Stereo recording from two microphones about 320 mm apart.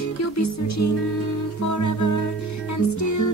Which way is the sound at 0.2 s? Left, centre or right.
Left.